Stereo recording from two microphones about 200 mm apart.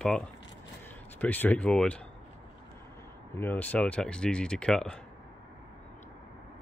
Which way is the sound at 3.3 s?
10° left (ahead or behind).